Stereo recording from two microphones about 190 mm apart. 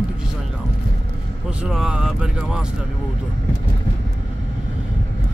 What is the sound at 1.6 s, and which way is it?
Speech, 5° right (ahead or behind).